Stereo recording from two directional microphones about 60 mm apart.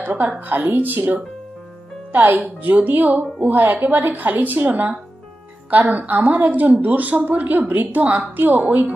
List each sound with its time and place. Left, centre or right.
0.0 s a woman's voice: right